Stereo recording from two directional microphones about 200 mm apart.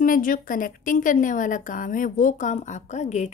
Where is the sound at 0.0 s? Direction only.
45° left (ahead or behind).